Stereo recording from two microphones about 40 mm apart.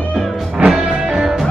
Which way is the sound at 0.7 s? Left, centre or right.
Centre.